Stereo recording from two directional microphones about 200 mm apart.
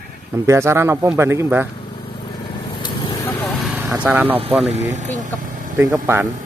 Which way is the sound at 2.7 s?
25° left (ahead or behind).